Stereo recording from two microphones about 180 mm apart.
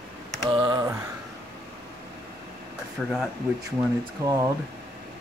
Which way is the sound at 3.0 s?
5° left (ahead or behind).